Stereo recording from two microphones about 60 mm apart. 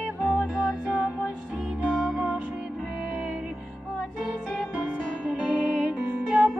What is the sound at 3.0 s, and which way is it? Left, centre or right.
Music, centre.